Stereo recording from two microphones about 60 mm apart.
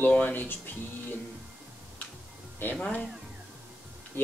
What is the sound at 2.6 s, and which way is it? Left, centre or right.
Speech, left.